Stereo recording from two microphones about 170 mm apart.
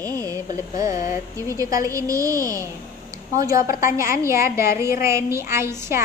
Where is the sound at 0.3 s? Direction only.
20° right (ahead or behind).